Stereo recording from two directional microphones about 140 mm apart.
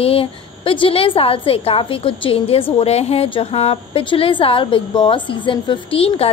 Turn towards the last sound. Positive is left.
turn(degrees=45)  # may be behind; listen again after turning